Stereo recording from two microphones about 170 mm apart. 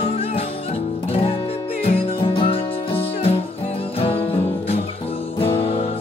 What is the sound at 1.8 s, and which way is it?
Music, 35° left (ahead or behind).